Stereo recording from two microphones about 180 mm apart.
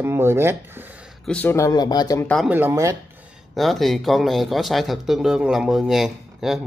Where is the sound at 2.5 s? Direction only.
10° right (ahead or behind).